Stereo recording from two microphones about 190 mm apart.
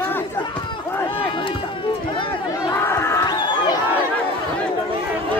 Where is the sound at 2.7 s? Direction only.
15° left (ahead or behind).